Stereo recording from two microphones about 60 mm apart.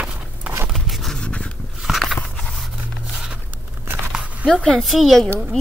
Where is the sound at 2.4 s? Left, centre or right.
Centre.